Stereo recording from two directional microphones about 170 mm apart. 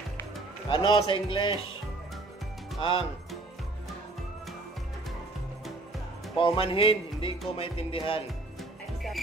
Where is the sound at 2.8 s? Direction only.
30° left (ahead or behind).